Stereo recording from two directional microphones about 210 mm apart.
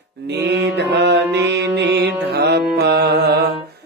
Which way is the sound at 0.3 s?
55° right (ahead or behind).